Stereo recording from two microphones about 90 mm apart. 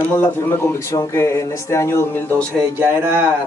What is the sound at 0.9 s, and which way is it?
Speech, 35° left (ahead or behind).